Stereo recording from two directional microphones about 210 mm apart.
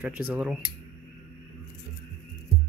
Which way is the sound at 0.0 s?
5° right (ahead or behind).